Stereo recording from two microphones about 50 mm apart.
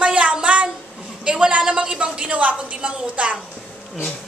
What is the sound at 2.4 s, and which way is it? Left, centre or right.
A woman's voice, right.